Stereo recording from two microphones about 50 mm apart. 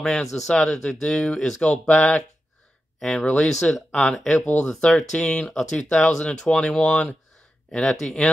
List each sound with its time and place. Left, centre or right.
0.0 s speech: centre; by 2.0 s left
2.0 s speech: centre
5.5 s speech: centre